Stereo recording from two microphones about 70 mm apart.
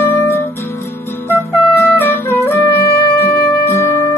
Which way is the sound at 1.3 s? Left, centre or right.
Left.